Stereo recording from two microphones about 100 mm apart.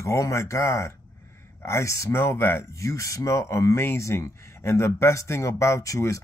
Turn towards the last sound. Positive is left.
turn(degrees=35)  # may be behind; listen again after turning